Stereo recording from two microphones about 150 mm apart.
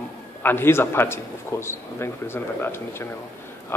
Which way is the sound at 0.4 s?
15° left (ahead or behind).